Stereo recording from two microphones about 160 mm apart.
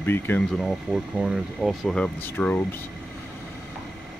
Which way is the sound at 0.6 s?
5° right (ahead or behind).